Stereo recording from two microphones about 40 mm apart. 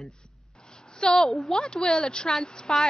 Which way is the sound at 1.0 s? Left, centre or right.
Centre.